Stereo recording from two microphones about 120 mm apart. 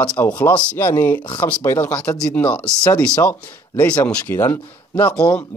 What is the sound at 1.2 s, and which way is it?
Speech, 45° left (ahead or behind).